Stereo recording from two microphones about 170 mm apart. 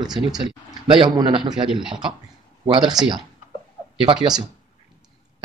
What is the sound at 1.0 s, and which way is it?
Speech, 25° right (ahead or behind).